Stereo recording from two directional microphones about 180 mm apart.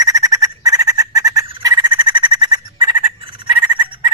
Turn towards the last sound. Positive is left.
turn(degrees=-25)  # may be behind; listen again after turning